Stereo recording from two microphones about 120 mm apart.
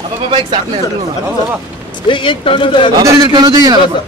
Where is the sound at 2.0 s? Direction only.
45° left (ahead or behind).